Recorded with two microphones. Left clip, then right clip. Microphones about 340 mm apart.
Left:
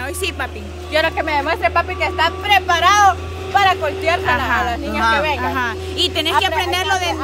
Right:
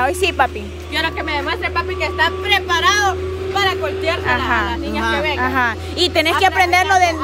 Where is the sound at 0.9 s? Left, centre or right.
Centre.